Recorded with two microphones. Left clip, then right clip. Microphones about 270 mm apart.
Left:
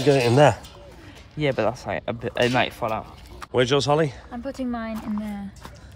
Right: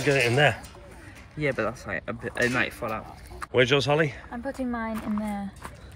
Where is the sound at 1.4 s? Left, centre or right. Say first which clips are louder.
Left 4 dB; left.